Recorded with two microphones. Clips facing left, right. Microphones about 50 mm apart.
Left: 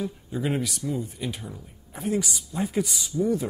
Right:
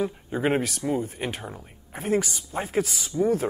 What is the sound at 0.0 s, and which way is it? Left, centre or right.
Speech, right.